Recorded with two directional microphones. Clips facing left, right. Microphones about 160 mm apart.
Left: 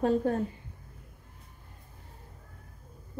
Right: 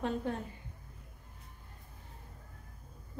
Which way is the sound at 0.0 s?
45° left (ahead or behind).